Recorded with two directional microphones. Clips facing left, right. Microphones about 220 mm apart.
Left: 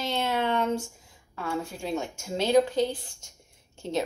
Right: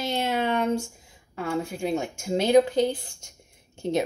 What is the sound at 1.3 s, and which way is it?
A woman's voice, 15° right (ahead or behind).